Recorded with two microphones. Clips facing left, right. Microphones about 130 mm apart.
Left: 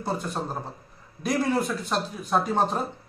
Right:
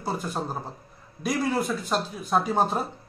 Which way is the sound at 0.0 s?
5° right (ahead or behind).